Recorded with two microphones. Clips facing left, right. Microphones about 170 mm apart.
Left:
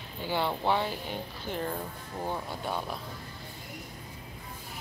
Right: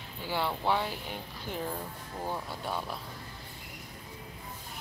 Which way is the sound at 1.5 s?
5° right (ahead or behind).